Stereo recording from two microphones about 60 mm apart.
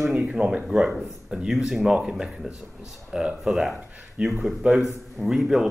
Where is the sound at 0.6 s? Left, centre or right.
Centre.